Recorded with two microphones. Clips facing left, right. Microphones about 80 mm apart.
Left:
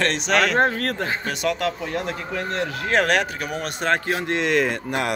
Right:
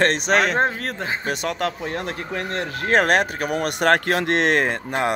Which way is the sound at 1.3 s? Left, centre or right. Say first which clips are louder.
Even; right.